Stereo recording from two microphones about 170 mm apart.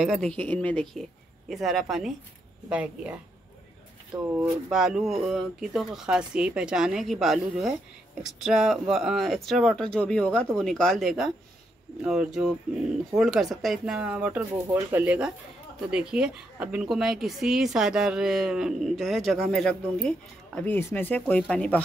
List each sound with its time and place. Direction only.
0.0 s speech: centre (ahead or behind)
4.1 s speech: 25° right (ahead or behind)
4.6 s speech: 5° right (ahead or behind)